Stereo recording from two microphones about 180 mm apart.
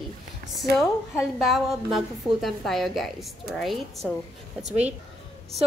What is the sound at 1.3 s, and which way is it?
A woman's voice, centre (ahead or behind).